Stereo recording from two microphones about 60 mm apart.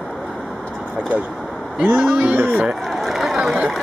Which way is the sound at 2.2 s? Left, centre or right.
Right.